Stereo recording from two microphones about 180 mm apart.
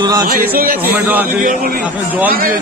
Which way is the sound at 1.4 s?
45° right (ahead or behind).